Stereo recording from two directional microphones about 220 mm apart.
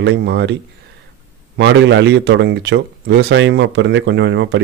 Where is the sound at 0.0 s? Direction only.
50° right (ahead or behind).